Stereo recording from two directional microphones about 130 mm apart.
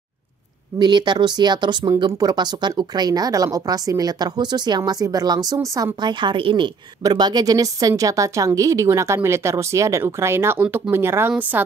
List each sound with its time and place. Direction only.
0.7 s a woman's voice: 35° right (ahead or behind); by 11.6 s 15° right (ahead or behind)